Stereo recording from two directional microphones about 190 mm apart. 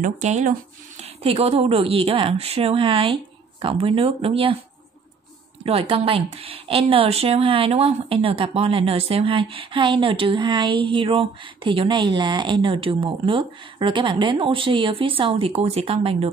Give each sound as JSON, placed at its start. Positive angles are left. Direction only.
{"t": 0.0, "sound": "speech", "side_deg": -40}
{"t": 5.7, "sound": "speech", "side_deg": -30}